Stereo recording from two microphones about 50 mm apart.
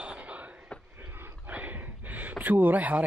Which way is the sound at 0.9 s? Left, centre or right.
Right.